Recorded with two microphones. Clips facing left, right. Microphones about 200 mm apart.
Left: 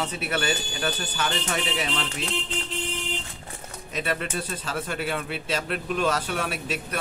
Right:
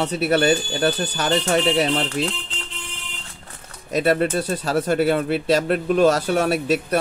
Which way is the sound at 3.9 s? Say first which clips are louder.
Right 11 dB; 40° right (ahead or behind).